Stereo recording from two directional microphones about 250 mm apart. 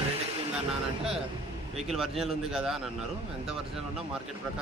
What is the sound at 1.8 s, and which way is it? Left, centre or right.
Speech, centre.